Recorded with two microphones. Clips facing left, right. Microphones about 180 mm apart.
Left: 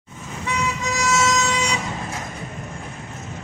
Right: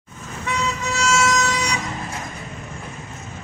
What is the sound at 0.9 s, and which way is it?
Vehicle, 20° left (ahead or behind).